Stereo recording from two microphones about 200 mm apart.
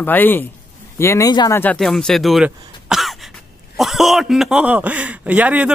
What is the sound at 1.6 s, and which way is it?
Speech, 5° left (ahead or behind).